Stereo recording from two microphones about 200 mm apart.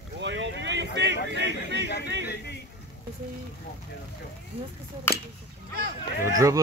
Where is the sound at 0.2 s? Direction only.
65° right (ahead or behind).